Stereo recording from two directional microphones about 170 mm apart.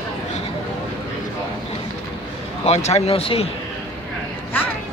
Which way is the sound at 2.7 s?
40° left (ahead or behind).